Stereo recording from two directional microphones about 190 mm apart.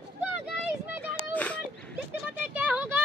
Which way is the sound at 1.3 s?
10° left (ahead or behind).